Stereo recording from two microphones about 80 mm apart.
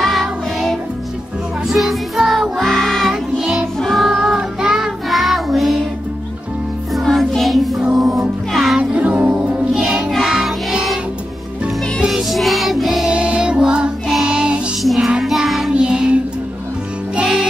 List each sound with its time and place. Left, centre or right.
0.0 s music: centre
6.9 s music: centre
8.9 s music: centre
14.8 s child singing: centre
15.7 s music: centre